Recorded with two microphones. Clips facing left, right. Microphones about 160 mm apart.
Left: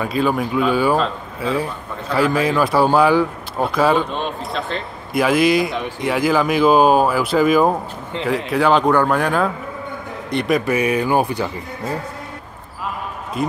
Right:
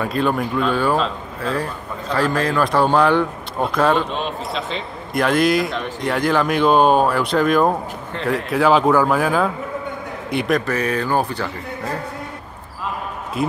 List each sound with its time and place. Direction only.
0.0 s a man's voice: centre (ahead or behind)
10.6 s speech: 10° left (ahead or behind)
13.4 s a man's voice: centre (ahead or behind)